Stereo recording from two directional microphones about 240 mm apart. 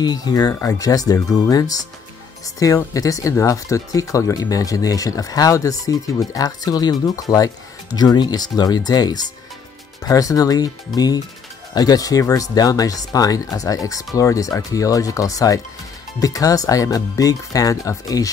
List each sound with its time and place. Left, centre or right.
0.0 s speech: centre